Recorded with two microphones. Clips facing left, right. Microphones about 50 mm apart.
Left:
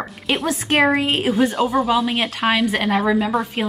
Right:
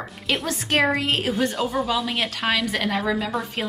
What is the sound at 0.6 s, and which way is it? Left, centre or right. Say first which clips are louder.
Speech: left 4 dB; centre.